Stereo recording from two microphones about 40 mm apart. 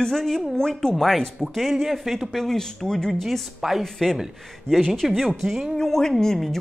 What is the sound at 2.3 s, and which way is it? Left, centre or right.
Speech, centre.